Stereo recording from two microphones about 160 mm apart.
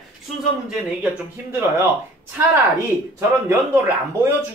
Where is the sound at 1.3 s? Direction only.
15° right (ahead or behind).